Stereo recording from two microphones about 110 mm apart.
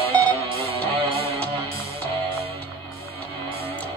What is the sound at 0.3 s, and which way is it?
Music, 55° right (ahead or behind).